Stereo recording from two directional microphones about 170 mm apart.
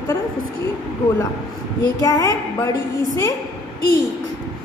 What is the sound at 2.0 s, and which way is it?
Speech, 20° left (ahead or behind).